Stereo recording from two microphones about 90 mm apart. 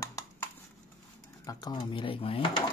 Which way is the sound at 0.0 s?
35° left (ahead or behind).